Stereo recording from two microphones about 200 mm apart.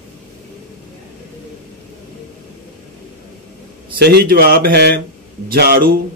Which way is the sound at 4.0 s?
55° right (ahead or behind).